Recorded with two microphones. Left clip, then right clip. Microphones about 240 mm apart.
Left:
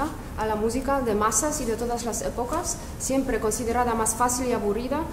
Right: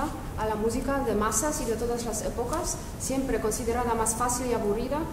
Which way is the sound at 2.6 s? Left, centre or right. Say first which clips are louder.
Left 2 dB; left.